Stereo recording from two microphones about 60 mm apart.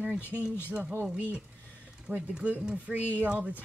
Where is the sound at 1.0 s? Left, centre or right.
Right.